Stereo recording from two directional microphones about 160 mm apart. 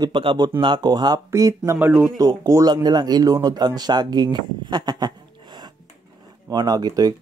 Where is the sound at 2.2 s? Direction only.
25° right (ahead or behind).